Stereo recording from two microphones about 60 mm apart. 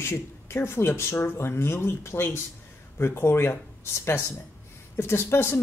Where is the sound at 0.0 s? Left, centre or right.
Left.